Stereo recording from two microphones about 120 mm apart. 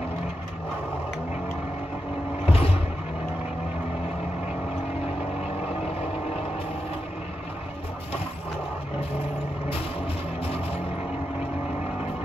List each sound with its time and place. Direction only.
2.4 s vehicle: 55° left (ahead or behind)